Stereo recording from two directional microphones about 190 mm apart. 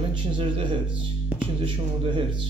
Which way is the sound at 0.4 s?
25° right (ahead or behind).